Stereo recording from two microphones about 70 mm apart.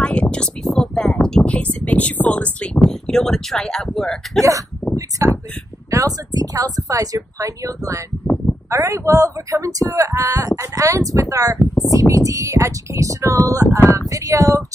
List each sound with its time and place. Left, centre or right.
0.0 s a sound: centre
4.4 s speech: right
5.9 s speech: right